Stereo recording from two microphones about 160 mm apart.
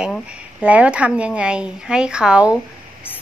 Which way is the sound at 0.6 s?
10° right (ahead or behind).